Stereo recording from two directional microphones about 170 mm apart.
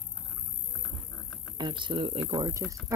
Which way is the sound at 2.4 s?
20° right (ahead or behind).